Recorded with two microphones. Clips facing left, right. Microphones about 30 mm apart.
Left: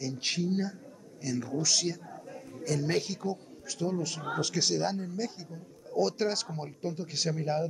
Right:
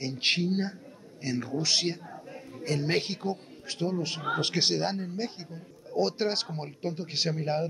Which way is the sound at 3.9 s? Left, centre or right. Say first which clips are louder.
Right 3 dB; right.